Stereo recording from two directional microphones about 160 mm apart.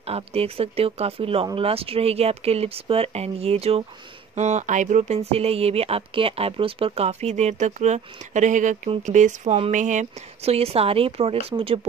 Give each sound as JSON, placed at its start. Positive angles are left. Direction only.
{"t": 0.0, "sound": "speech", "side_deg": -40}